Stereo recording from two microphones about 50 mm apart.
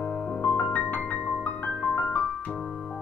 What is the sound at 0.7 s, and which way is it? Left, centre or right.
Music, left.